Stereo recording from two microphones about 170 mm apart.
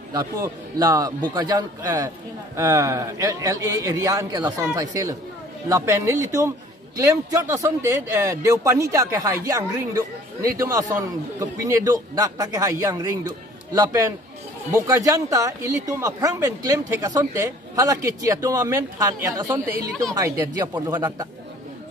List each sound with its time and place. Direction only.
0.1 s speech: 20° right (ahead or behind)